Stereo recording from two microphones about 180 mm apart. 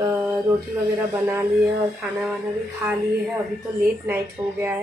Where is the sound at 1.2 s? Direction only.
15° right (ahead or behind).